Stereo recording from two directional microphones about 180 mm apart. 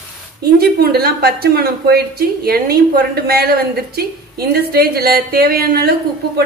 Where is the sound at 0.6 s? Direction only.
60° right (ahead or behind).